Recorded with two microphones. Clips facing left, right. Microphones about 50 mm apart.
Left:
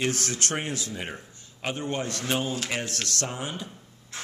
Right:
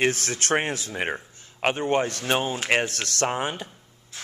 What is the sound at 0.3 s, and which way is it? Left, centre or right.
Speech, right.